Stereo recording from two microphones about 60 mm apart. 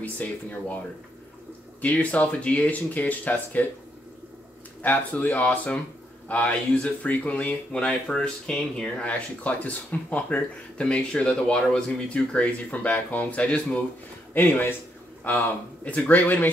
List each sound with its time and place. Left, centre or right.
0.0 s speech: left
1.8 s speech: left
4.8 s speech: left; by 8.9 s centre
9.0 s speech: left
14.3 s speech: left